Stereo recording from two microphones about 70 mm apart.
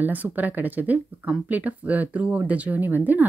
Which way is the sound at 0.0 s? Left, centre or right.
Right.